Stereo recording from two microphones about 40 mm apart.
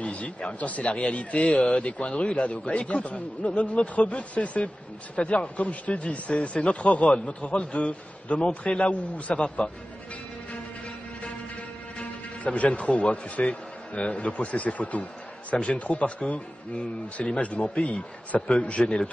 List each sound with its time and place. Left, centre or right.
0.0 s speech: left
12.0 s speech: left
18.8 s speech: centre